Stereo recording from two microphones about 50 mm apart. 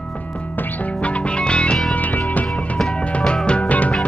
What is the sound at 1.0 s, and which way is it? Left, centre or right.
Music, left.